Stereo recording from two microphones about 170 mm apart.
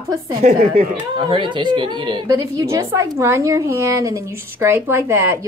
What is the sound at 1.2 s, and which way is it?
A woman's voice, 30° right (ahead or behind).